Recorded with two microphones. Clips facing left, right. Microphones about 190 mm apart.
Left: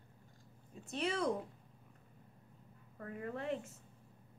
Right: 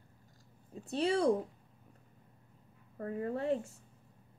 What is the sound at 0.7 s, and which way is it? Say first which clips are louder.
Speech: right 7 dB; 30° right (ahead or behind).